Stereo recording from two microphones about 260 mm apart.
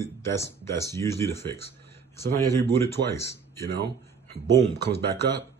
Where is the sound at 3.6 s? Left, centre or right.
Right.